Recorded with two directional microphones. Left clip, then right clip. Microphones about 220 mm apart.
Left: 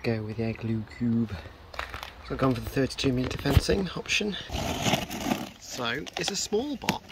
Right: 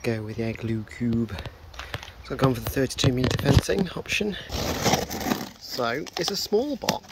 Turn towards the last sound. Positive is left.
turn(degrees=-15)  # may be behind; listen again after turning